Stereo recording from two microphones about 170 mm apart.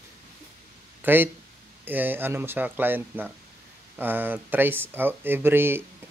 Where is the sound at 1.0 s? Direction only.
10° right (ahead or behind).